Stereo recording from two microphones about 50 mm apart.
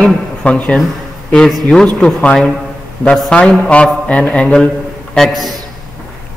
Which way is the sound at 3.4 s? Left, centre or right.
Centre.